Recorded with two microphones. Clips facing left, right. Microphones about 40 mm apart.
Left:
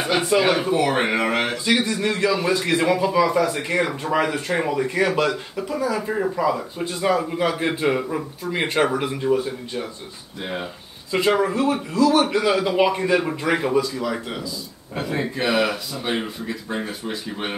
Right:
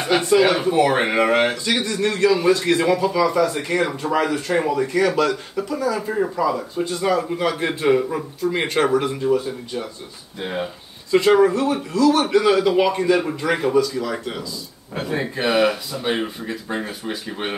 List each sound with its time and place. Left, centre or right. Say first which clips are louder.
0.2 s a man's voice: right 2 dB; centre
0.6 s a man's voice: right 2 dB; centre
1.7 s a man's voice: even; centre
5.9 s a man's voice: right 1 dB; centre
6.4 s speech: right 1 dB; left
7.2 s a man's voice: right 1 dB; centre
10.4 s a man's voice: right 3 dB; centre
11.1 s a man's voice: right 5 dB; centre
15.0 s a man's voice: right 1 dB; centre